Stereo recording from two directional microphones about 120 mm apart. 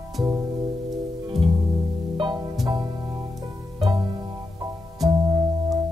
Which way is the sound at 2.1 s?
35° right (ahead or behind).